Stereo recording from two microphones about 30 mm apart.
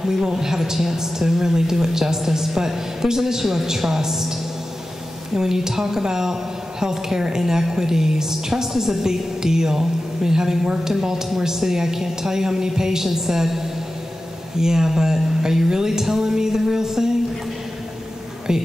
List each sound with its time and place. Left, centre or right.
0.0 s a woman's voice: centre
18.5 s a woman's voice: right